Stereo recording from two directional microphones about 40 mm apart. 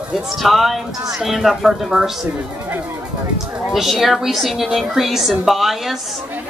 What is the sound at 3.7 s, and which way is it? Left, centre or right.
A woman's voice, centre.